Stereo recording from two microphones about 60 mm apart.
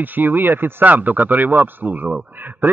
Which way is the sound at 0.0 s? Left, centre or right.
Right.